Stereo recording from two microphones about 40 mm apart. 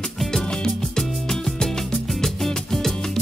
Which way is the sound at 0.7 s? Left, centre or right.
Centre.